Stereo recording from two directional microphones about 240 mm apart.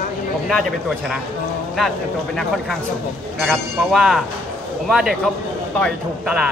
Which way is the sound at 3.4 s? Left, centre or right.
Centre.